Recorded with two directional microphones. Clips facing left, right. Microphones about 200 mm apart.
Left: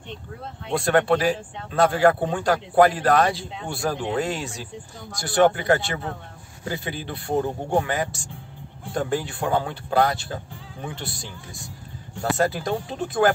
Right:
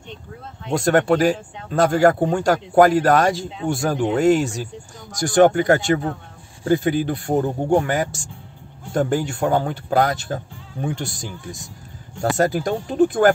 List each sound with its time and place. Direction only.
0.7 s a man's voice: 45° right (ahead or behind)